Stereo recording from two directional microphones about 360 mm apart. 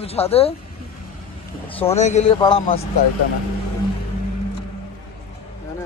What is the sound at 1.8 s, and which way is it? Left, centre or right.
Speech, centre.